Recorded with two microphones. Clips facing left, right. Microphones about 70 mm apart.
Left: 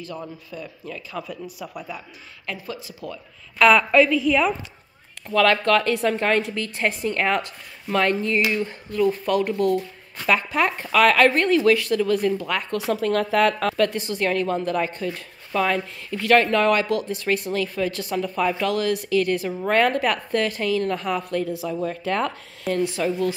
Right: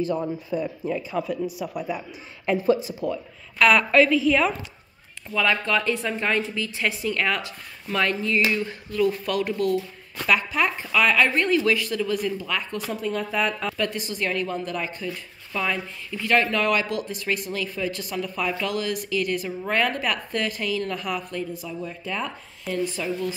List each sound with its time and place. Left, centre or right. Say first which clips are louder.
0.2 s speech: right 8 dB; right
1.1 s a man's voice: right 6 dB; centre
2.5 s speech: right 13 dB; right
3.5 s a woman's voice: left 2 dB; centre
5.3 s a woman's voice: left 5 dB; left
10.2 s a woman's voice: left 1 dB; left
10.6 s a woman's voice: left 4 dB; left
12.9 s a woman's voice: left 6 dB; left
21.2 s a woman's voice: left 6 dB; left
22.0 s speech: left 6 dB; left
22.7 s a woman's voice: left 4 dB; left